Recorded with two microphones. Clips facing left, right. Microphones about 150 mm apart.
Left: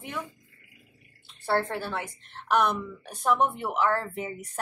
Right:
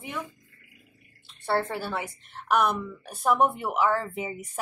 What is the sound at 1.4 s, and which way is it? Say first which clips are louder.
A woman's voice: even; centre (ahead or behind).